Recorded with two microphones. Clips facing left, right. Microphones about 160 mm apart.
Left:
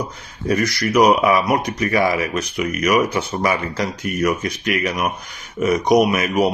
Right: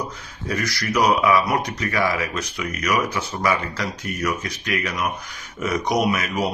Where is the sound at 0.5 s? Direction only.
20° left (ahead or behind).